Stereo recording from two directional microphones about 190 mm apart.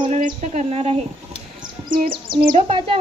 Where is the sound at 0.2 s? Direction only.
40° right (ahead or behind).